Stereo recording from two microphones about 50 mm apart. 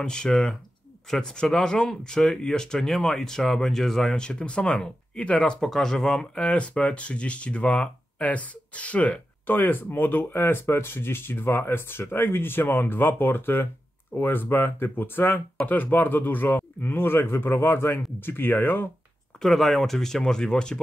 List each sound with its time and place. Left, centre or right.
0.0 s speech: centre
4.2 s speech: centre
5.7 s speech: centre
6.3 s speech: left
9.5 s speech: left
19.4 s speech: centre